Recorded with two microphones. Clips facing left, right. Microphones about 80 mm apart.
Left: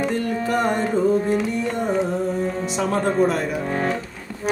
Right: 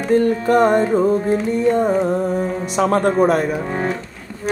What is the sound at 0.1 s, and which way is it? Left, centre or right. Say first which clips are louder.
Music: right 8 dB; right.